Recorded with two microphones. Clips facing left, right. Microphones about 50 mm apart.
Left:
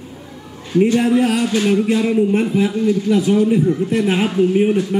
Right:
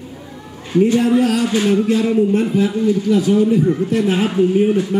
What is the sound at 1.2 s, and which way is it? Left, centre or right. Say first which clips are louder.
A man's voice: right 1 dB; left.